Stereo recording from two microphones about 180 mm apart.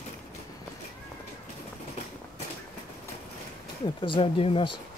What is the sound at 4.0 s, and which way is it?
Speech, 25° left (ahead or behind).